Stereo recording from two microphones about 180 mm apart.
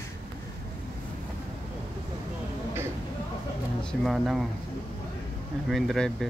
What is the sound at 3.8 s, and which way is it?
Speech, centre (ahead or behind).